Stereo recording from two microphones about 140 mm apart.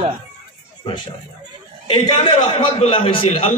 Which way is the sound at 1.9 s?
40° left (ahead or behind).